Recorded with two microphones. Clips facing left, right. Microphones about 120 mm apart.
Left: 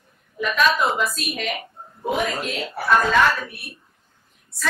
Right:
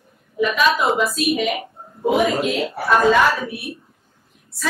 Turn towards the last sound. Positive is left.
turn(degrees=0)  # may be behind; listen again after turning